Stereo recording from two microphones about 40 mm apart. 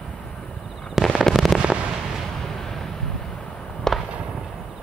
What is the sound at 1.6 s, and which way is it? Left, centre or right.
Fireworks, right.